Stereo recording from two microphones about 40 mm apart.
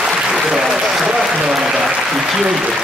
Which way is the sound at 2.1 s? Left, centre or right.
Centre.